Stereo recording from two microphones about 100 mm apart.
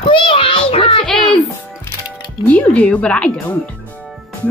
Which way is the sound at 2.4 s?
15° left (ahead or behind).